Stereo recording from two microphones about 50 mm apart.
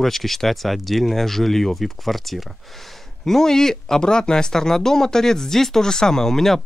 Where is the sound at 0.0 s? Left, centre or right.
Centre.